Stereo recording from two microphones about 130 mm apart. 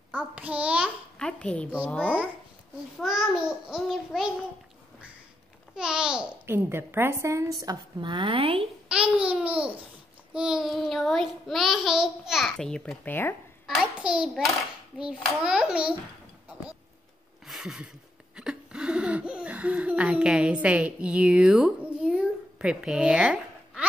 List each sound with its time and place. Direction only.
0.1 s a child's voice: 10° right (ahead or behind)
1.1 s a child's voice: 5° left (ahead or behind)
3.0 s child singing: 5° right (ahead or behind)
5.8 s a child's voice: 5° right (ahead or behind)
6.4 s a woman's voice: 15° right (ahead or behind); by 8.6 s 45° right (ahead or behind)
8.8 s a child's voice: 10° right (ahead or behind)
10.3 s child singing: 5° right (ahead or behind); by 13.4 s 15° left (ahead or behind)
13.7 s a child's voice: 5° right (ahead or behind)
17.5 s a sound: 5° right (ahead or behind)